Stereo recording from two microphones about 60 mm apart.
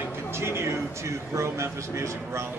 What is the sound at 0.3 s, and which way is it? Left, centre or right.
A man's voice, right.